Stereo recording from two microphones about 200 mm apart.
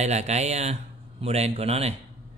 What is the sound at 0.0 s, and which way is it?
Speech, 35° right (ahead or behind).